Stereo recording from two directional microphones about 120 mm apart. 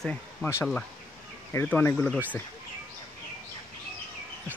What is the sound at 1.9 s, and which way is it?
Speech, 5° left (ahead or behind).